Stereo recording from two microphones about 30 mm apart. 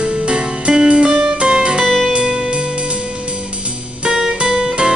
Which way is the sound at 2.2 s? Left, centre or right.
Right.